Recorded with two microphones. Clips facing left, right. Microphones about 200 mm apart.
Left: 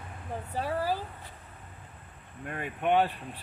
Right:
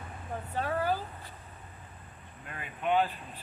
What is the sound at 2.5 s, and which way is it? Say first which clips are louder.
Speech: left 3 dB; 55° left (ahead or behind).